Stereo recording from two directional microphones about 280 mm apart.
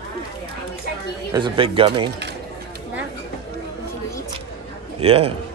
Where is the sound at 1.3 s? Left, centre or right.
Centre.